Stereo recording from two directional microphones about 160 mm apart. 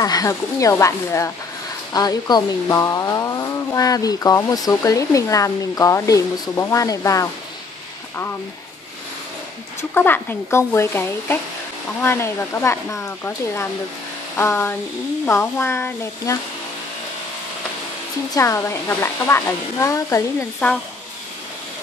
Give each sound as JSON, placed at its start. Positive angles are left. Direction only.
{"t": 0.0, "sound": "speech", "side_deg": 25}
{"t": 9.8, "sound": "speech", "side_deg": 15}
{"t": 18.3, "sound": "speech", "side_deg": 20}